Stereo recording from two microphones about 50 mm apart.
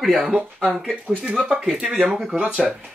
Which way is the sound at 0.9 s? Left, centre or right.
Right.